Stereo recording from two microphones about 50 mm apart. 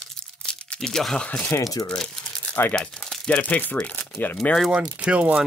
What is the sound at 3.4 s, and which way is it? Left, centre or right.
Speech, left.